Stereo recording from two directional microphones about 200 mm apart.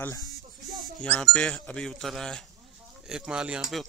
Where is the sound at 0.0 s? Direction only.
15° left (ahead or behind).